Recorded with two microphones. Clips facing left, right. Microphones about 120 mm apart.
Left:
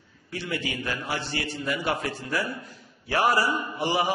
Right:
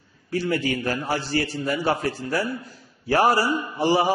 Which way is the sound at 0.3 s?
40° right (ahead or behind).